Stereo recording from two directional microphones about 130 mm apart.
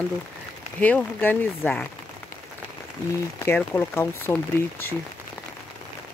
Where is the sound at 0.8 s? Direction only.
10° left (ahead or behind).